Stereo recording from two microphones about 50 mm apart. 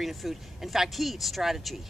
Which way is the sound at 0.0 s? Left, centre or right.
Centre.